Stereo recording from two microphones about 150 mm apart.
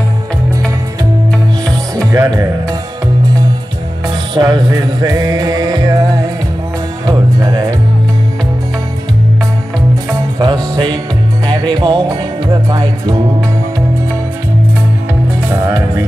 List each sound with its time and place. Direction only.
2.1 s music: 25° right (ahead or behind)
4.4 s speech: 25° right (ahead or behind)
5.0 s music: 25° right (ahead or behind)
10.4 s music: 30° right (ahead or behind)